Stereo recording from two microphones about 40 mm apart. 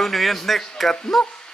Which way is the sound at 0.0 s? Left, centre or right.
Centre.